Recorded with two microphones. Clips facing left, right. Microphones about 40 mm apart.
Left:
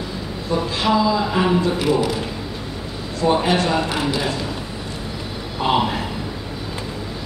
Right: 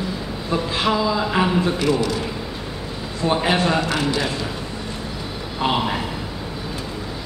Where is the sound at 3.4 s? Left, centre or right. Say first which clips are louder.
Even; centre.